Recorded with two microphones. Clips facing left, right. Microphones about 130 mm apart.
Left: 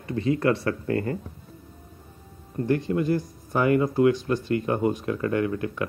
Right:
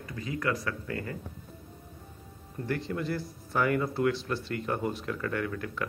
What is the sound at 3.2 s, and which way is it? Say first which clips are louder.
Speech: left 5 dB; 15° left (ahead or behind).